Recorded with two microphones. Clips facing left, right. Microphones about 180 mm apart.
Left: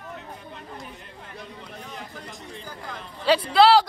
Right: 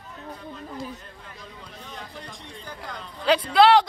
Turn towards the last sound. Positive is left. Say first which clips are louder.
# even
turn(degrees=5)  # may be behind; listen again after turning